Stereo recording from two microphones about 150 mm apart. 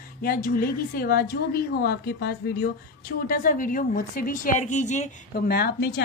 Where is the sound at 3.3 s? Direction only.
65° left (ahead or behind).